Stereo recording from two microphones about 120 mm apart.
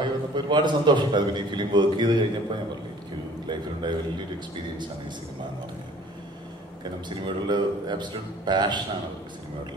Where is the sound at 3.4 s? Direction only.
40° right (ahead or behind).